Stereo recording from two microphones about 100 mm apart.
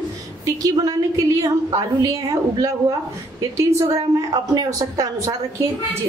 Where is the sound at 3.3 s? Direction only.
30° right (ahead or behind).